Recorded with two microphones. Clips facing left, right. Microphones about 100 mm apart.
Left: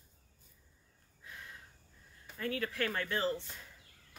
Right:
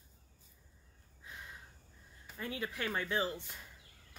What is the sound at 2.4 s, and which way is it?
Speech, 15° right (ahead or behind).